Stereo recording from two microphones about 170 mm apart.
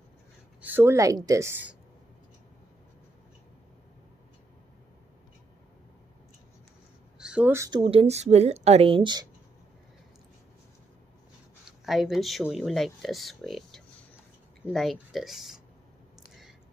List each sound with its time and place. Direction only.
0.6 s a woman's voice: 10° right (ahead or behind)
7.2 s speech: 5° right (ahead or behind)
7.8 s a woman's voice: 35° right (ahead or behind)
11.8 s speech: centre (ahead or behind)